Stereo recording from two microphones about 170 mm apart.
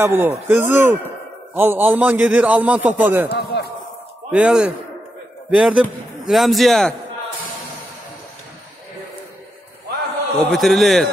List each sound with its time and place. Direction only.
0.0 s a man's voice: 15° right (ahead or behind)
3.3 s a man's voice: 75° left (ahead or behind)
4.3 s a man's voice: 5° right (ahead or behind)
10.4 s a man's voice: centre (ahead or behind)